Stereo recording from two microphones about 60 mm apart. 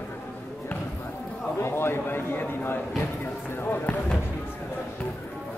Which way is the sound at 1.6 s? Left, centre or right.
Left.